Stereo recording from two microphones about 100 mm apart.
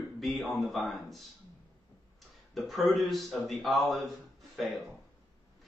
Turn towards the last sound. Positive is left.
turn(degrees=0)  # may be behind; listen again after turning